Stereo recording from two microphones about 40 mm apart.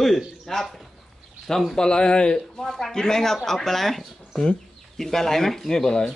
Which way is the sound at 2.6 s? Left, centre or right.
Centre.